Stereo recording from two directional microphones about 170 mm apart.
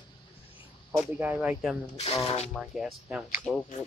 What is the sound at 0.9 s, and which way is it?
Speech, 10° right (ahead or behind).